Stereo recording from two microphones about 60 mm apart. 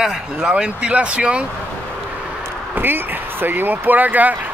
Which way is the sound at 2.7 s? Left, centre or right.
Right.